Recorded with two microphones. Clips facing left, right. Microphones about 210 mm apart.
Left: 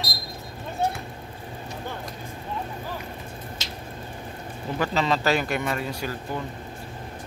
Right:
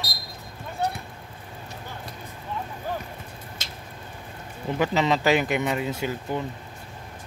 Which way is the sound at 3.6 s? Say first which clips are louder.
Left 4 dB; 50° right (ahead or behind).